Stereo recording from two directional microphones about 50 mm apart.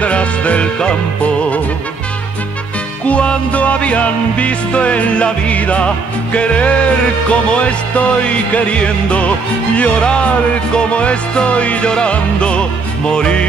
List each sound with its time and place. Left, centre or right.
0.0 s music: left
3.1 s music: left